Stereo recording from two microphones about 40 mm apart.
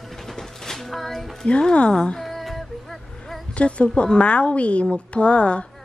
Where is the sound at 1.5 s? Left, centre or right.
Left.